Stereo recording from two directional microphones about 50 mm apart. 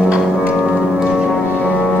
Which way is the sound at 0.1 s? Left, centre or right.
Right.